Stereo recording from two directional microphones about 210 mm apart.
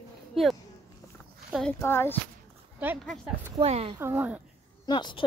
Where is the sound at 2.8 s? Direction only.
5° right (ahead or behind).